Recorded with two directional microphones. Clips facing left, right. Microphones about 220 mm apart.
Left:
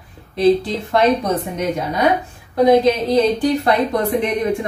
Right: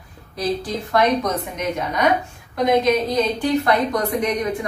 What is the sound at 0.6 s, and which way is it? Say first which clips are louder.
A woman's voice: left 3 dB; 25° left (ahead or behind).